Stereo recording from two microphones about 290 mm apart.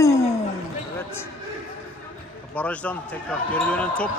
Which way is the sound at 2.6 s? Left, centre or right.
Centre.